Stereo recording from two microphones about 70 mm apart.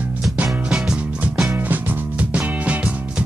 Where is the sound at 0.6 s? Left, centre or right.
Centre.